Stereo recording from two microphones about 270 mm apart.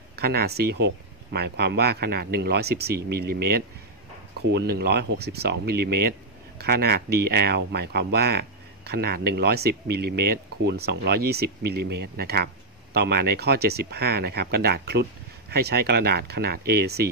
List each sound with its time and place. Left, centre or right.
0.1 s speech: right